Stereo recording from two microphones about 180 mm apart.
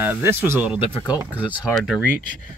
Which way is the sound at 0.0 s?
10° right (ahead or behind).